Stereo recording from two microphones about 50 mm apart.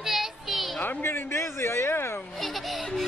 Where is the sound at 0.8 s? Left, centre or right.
Left.